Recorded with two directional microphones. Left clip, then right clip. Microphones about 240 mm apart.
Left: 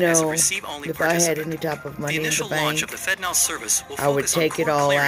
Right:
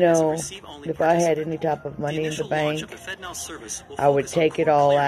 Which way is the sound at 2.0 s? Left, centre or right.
Left.